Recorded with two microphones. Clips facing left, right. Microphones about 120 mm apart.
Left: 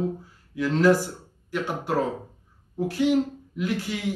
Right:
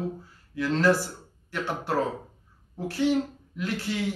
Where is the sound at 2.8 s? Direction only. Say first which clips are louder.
Left 2 dB; 15° left (ahead or behind).